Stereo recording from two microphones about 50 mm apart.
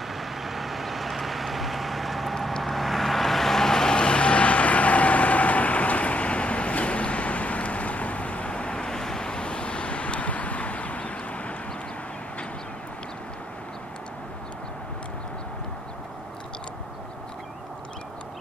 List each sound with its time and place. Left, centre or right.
0.1 s vehicle: centre; by 11.5 s left